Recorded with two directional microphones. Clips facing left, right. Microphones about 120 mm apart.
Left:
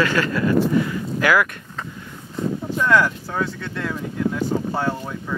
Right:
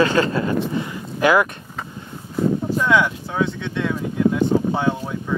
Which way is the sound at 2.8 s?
Centre (ahead or behind).